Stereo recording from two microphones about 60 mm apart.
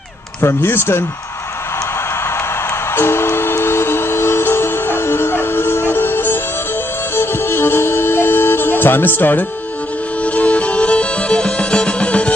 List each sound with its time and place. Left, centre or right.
0.4 s speech: left
3.0 s music: left
10.2 s music: left